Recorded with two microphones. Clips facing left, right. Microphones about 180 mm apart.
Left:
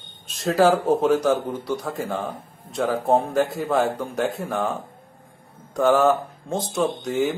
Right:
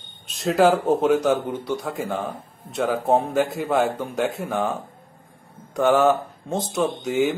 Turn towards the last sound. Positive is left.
turn(degrees=0)  # may be behind; listen again after turning